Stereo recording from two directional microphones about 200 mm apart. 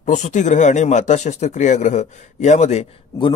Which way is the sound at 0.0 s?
40° left (ahead or behind).